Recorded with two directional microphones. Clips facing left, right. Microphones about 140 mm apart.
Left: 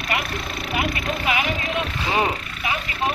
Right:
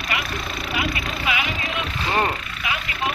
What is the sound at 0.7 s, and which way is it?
Speech, 45° left (ahead or behind).